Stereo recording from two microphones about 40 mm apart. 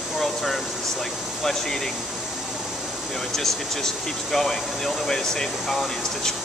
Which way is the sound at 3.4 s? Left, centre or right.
Centre.